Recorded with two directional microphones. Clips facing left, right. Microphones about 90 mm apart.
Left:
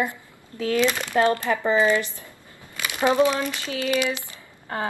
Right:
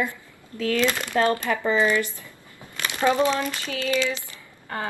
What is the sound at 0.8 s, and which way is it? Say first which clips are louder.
A woman's voice: left 1 dB; 20° left (ahead or behind).